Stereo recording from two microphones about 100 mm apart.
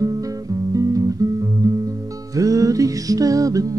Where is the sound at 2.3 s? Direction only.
35° right (ahead or behind).